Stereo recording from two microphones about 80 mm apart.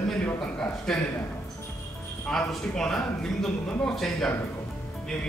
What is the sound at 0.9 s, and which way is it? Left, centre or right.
Speech, centre.